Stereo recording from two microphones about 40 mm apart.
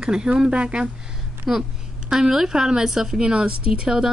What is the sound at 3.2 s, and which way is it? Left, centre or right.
Speech, right.